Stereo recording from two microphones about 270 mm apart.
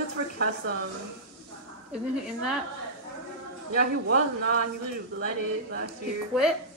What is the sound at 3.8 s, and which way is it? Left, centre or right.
Speech, right.